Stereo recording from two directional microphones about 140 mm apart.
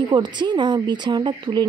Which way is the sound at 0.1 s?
30° right (ahead or behind).